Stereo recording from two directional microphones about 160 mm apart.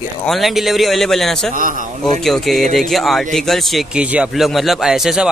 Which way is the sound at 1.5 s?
55° right (ahead or behind).